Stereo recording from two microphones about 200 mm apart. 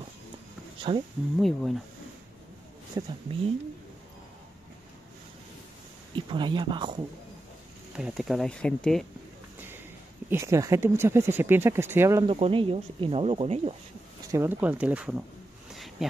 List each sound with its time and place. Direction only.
0.9 s speech: 25° right (ahead or behind)
1.4 s speech: centre (ahead or behind)
2.9 s speech: 20° right (ahead or behind)
6.1 s speech: 25° right (ahead or behind)
7.9 s speech: 5° right (ahead or behind)
10.3 s speech: 15° right (ahead or behind)
12.3 s speech: 25° right (ahead or behind)
14.3 s speech: 10° right (ahead or behind)
15.7 s a sound: centre (ahead or behind)